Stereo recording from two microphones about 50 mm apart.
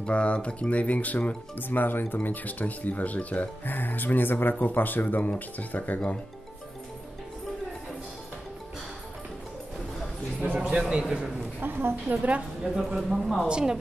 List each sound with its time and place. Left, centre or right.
0.0 s speech: left
10.4 s a man's voice: right
10.9 s a man's voice: centre
11.6 s a woman's voice: right
12.1 s a man's voice: right
13.1 s a woman's voice: centre
13.5 s a man's voice: centre